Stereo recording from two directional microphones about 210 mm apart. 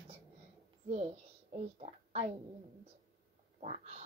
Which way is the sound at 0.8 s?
30° right (ahead or behind).